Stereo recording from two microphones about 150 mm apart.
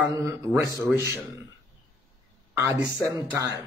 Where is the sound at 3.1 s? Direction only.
15° right (ahead or behind).